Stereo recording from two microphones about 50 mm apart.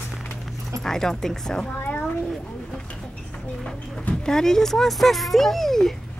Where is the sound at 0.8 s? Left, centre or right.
Centre.